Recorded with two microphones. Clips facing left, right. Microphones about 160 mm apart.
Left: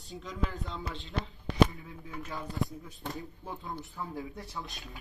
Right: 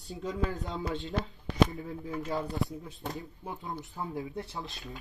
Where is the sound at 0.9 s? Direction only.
40° right (ahead or behind).